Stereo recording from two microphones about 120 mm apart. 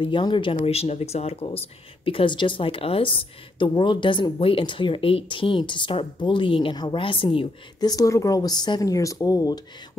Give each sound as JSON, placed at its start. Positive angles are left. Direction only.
{"t": 0.0, "sound": "speech", "side_deg": 40}
{"t": 0.6, "sound": "speech", "side_deg": 60}